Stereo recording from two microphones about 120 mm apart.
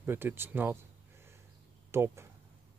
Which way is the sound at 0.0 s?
20° right (ahead or behind).